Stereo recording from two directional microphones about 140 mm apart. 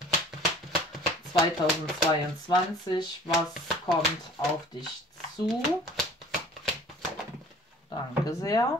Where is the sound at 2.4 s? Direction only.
30° left (ahead or behind).